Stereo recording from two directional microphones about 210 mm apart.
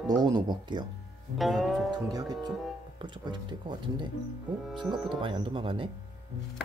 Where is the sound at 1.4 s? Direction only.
Centre (ahead or behind).